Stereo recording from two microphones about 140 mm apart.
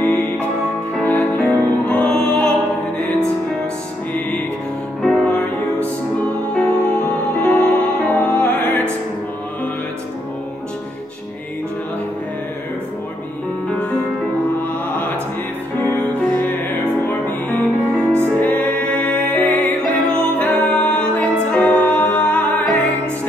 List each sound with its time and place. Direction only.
1.0 s music: 10° left (ahead or behind)
5.0 s music: 5° left (ahead or behind)
14.6 s music: 15° left (ahead or behind)
17.9 s music: 15° right (ahead or behind)
18.4 s music: 15° left (ahead or behind)